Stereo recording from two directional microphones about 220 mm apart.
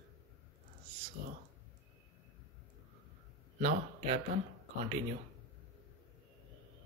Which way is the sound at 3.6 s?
30° right (ahead or behind).